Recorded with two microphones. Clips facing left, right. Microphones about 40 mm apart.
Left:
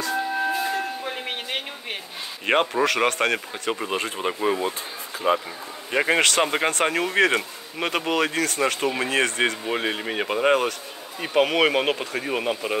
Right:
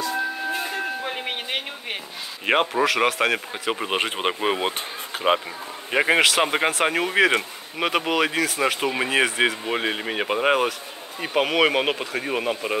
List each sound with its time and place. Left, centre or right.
0.6 s doorbell: centre
2.4 s speech: centre
3.9 s speech: right
5.1 s speech: right
5.9 s speech: centre